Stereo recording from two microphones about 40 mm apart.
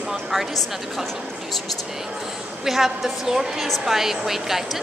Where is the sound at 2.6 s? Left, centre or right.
Centre.